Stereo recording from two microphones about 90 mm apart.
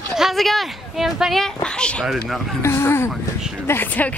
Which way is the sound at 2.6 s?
30° left (ahead or behind).